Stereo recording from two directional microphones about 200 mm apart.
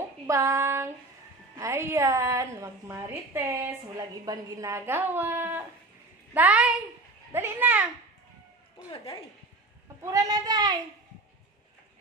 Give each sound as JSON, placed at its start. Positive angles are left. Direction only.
{"t": 0.3, "sound": "a woman's voice", "side_deg": -15}
{"t": 10.0, "sound": "a child's voice", "side_deg": -20}